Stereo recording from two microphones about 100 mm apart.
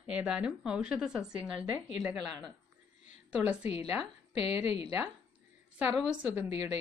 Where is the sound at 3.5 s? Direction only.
90° left.